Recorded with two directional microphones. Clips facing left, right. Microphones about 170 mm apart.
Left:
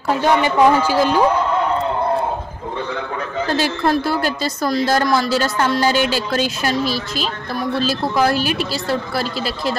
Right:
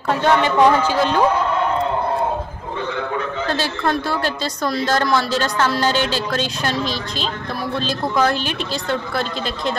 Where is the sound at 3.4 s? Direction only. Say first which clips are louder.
Left 5 dB; 10° left (ahead or behind).